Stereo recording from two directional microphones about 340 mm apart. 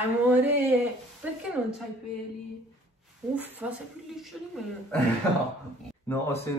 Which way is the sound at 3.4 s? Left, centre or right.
Centre.